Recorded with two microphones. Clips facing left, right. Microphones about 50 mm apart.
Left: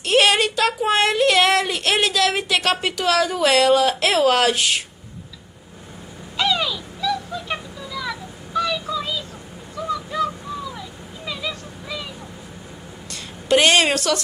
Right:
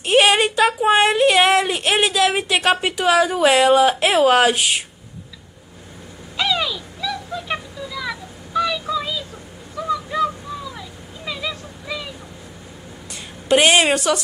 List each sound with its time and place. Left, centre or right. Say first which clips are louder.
0.0 s speech: right 2 dB; centre
6.3 s a sound: even; centre
13.1 s a woman's voice: right 1 dB; centre